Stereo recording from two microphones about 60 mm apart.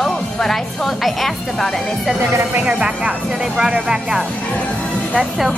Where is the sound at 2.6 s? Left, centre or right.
Centre.